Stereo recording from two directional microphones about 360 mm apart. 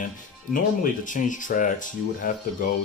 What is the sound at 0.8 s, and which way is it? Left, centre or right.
Speech, left.